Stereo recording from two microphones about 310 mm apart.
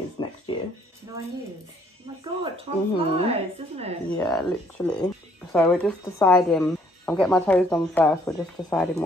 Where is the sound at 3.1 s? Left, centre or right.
Centre.